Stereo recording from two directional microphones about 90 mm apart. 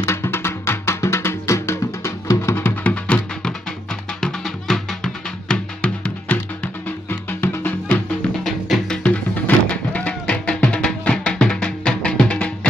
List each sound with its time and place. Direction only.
0.0 s music: 30° left (ahead or behind)
4.2 s music: 5° left (ahead or behind); by 8.0 s 20° left (ahead or behind)
8.5 s music: 5° left (ahead or behind)